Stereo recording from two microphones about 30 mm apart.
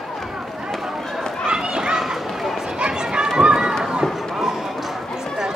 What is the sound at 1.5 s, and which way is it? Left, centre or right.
Children playing, right.